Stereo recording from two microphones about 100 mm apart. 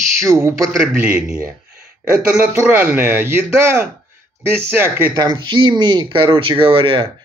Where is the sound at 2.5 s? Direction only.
20° right (ahead or behind).